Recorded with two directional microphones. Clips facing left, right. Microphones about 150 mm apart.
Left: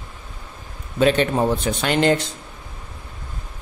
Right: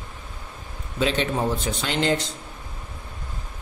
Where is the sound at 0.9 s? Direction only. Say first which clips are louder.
Left 6 dB; 55° left (ahead or behind).